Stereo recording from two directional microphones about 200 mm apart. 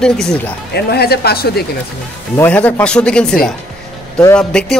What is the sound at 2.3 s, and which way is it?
Speech, 10° left (ahead or behind).